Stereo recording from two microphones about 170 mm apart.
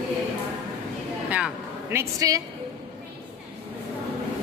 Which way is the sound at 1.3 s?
10° right (ahead or behind).